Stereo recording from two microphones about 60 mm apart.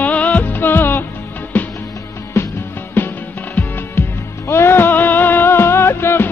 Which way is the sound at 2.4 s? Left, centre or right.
Left.